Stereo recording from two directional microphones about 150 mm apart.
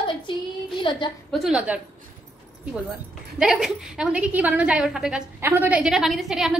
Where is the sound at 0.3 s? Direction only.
30° left (ahead or behind).